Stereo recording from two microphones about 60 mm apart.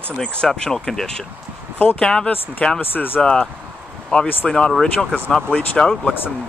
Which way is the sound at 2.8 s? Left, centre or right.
Left.